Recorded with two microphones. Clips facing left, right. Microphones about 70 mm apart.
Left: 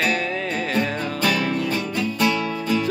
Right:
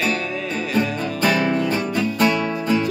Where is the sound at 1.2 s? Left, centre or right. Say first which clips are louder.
Right 4 dB; right.